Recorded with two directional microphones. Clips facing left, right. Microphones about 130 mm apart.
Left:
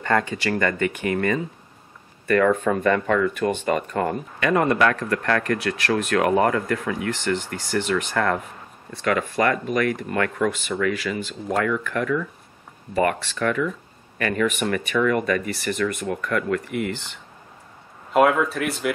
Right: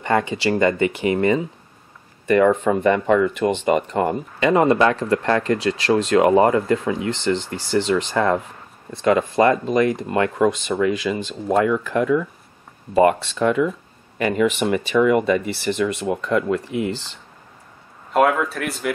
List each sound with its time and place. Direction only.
0.0 s speech: 15° right (ahead or behind)
18.1 s speech: centre (ahead or behind)